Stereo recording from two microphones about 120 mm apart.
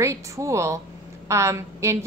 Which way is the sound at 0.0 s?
25° right (ahead or behind).